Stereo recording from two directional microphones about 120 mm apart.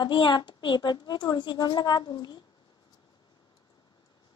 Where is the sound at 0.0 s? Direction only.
40° left (ahead or behind).